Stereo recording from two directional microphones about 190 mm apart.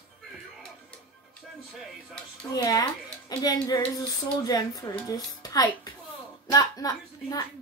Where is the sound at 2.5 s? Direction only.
20° left (ahead or behind).